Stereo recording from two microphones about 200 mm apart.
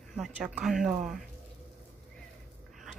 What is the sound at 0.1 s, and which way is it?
Speech, centre (ahead or behind).